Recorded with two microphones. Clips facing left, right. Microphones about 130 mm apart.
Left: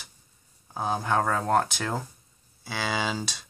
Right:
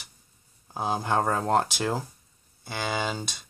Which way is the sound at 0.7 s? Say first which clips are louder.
Even; 10° right (ahead or behind).